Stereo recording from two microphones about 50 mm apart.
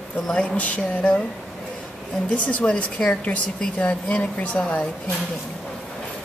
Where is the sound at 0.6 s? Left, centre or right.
Left.